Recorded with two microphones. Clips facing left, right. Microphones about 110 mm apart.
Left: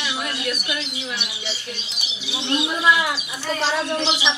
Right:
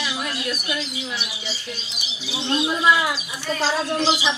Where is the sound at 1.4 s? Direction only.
25° left (ahead or behind).